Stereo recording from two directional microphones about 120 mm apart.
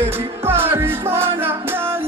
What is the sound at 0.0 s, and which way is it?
Music, 20° right (ahead or behind).